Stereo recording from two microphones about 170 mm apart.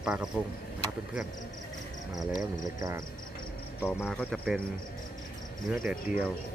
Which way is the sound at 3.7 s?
10° left (ahead or behind).